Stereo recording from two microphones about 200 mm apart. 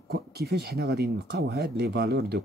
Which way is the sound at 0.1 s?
50° right (ahead or behind).